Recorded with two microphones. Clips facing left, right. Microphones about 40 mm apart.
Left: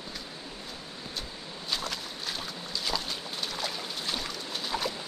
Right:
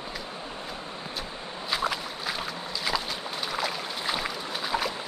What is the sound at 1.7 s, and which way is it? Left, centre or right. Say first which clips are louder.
Boat: right 6 dB; centre.